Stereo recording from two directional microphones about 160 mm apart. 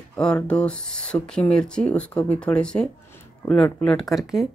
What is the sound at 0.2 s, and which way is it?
Speech, 5° left (ahead or behind).